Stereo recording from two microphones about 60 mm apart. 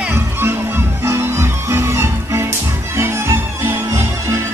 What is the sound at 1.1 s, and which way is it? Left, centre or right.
Music, right.